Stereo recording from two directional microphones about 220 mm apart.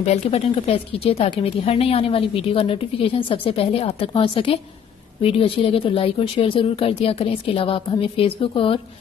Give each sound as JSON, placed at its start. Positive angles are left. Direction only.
{"t": 0.0, "sound": "speech", "side_deg": 30}